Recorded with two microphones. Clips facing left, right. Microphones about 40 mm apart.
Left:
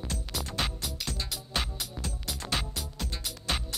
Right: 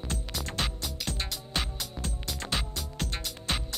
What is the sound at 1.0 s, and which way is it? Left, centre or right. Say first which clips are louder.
Music: right 3 dB; right.